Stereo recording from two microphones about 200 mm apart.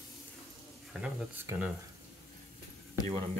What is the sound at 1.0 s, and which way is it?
Speech, 5° right (ahead or behind).